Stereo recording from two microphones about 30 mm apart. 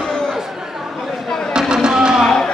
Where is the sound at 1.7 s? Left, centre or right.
Right.